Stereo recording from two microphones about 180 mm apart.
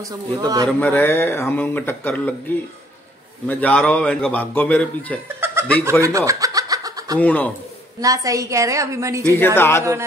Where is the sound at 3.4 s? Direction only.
5° left (ahead or behind).